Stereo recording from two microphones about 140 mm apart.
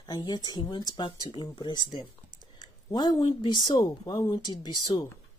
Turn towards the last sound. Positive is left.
turn(degrees=25)  # may be behind; listen again after turning